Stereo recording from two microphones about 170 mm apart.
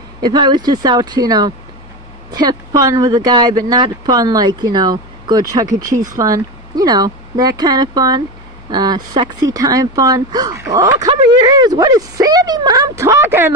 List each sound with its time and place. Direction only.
0.2 s speech: 25° right (ahead or behind)